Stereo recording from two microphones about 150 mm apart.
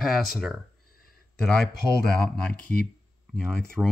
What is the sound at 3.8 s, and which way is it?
Speech, 5° right (ahead or behind).